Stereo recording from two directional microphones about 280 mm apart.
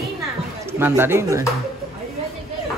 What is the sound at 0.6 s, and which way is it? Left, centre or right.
Speech, centre.